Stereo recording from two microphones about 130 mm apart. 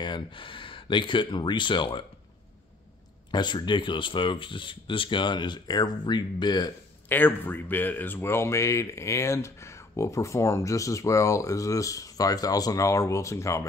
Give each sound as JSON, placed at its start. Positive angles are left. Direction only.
{"t": 0.0, "sound": "speech", "side_deg": 40}
{"t": 3.3, "sound": "speech", "side_deg": 35}
{"t": 7.1, "sound": "speech", "side_deg": 15}